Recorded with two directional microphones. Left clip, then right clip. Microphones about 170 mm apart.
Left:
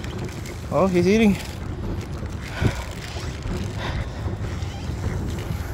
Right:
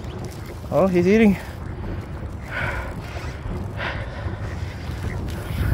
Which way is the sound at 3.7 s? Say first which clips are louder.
Right 6 dB; 25° right (ahead or behind).